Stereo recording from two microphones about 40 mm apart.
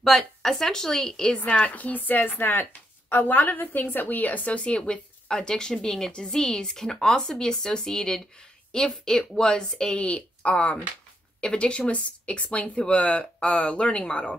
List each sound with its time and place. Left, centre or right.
0.4 s speech: centre
1.4 s a woman's voice: left